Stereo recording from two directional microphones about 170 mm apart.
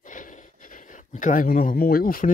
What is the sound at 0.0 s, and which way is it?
Gasp, 50° left (ahead or behind).